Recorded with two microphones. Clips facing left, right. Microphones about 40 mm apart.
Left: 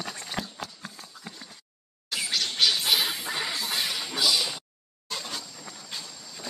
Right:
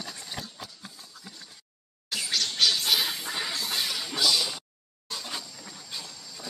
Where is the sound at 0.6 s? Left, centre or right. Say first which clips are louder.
Left 4 dB; left.